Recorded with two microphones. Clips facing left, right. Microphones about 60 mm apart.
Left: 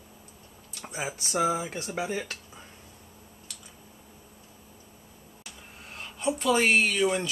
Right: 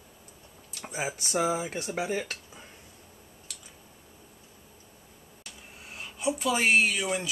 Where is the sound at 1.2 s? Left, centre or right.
Centre.